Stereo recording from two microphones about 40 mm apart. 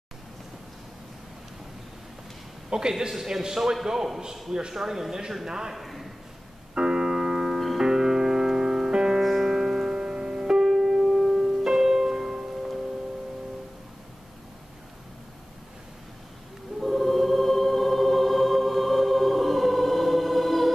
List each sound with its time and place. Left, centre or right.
2.7 s a man's voice: centre
5.8 s a sound: centre
6.7 s keyboard: right
7.8 s music: centre
16.8 s choir: centre